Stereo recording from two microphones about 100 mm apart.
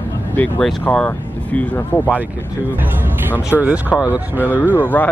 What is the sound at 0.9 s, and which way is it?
Speech, 15° left (ahead or behind).